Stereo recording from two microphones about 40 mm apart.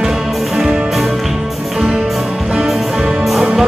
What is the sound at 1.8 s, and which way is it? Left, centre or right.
Music, centre.